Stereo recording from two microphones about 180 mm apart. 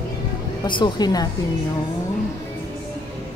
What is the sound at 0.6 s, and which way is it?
Speech, 25° left (ahead or behind).